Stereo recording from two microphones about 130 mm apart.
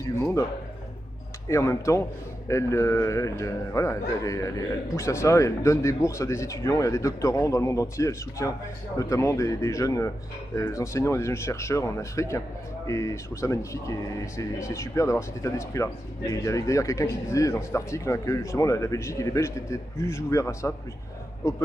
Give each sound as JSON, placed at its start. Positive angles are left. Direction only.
{"t": 0.0, "sound": "speech", "side_deg": 25}
{"t": 1.5, "sound": "speech", "side_deg": 25}